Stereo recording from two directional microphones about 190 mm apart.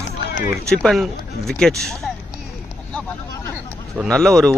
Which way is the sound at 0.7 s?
5° left (ahead or behind).